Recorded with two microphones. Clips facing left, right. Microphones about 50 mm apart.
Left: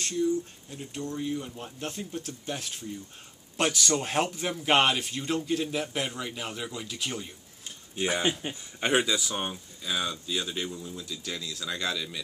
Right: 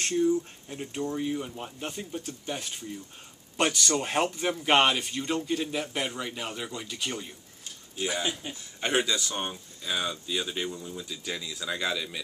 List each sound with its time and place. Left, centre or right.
0.0 s speech: right; by 7.3 s centre
7.9 s speech: left
8.8 s speech: centre